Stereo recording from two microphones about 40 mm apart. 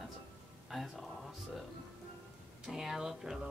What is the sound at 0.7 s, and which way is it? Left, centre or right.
Speech, centre.